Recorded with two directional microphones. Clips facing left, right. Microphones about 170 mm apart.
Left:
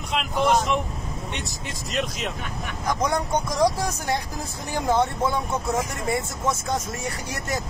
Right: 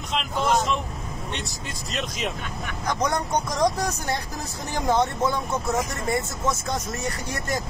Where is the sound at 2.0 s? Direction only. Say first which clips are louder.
Left 2 dB; centre (ahead or behind).